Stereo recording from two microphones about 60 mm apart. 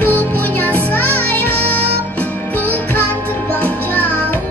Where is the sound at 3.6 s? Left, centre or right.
Left.